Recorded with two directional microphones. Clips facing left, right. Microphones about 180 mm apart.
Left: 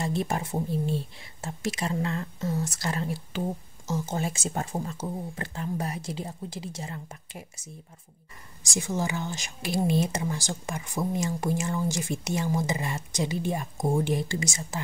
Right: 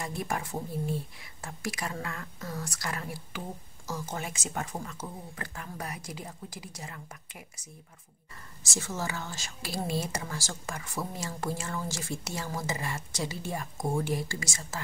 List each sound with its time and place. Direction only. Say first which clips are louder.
0.0 s speech: left 5 dB; 25° left (ahead or behind)
8.6 s speech: left 5 dB; 15° left (ahead or behind)